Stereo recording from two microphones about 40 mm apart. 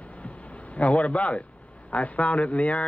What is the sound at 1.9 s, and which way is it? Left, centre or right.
Speech, left.